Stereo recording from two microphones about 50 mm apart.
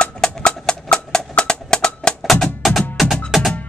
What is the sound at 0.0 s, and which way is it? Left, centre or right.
Percussion, centre.